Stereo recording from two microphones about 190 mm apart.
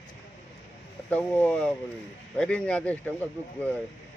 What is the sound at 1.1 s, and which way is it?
A man's voice, 10° left (ahead or behind).